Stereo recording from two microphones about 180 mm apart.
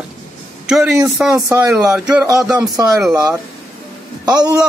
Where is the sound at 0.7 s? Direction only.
5° right (ahead or behind).